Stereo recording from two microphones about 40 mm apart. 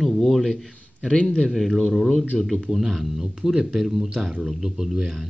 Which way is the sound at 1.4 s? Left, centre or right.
Centre.